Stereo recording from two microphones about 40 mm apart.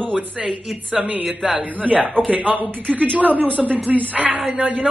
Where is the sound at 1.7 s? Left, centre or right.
Right.